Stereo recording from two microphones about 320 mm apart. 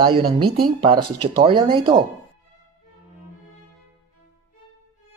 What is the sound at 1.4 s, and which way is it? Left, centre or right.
Speech, centre.